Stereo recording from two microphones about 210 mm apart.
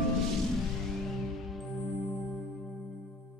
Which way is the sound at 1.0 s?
Centre (ahead or behind).